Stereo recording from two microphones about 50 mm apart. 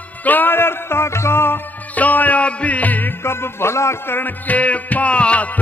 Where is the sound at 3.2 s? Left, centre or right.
Left.